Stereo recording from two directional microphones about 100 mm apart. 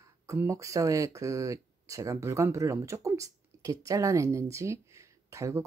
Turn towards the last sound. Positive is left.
turn(degrees=-30)  # may be behind; listen again after turning